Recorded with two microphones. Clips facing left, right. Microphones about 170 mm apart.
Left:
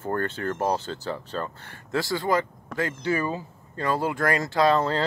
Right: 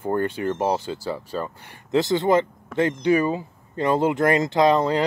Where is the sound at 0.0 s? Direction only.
15° right (ahead or behind).